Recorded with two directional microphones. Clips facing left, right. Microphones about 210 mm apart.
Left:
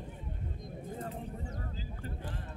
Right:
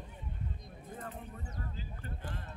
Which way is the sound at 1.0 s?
30° left (ahead or behind).